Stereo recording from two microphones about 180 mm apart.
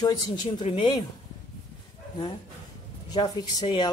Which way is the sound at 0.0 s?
25° left (ahead or behind).